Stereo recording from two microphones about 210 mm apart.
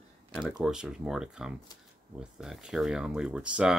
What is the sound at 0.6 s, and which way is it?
Speech, 5° right (ahead or behind).